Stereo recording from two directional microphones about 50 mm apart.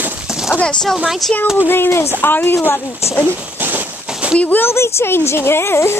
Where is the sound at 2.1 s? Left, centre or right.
Left.